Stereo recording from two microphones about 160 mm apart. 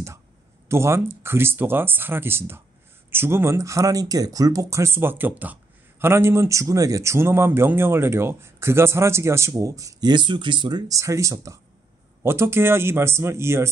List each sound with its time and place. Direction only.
0.7 s speech: 15° right (ahead or behind)